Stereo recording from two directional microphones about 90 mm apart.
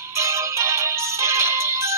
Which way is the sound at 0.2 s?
30° right (ahead or behind).